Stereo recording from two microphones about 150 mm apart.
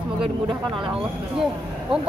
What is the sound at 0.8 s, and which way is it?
Speech, 5° right (ahead or behind).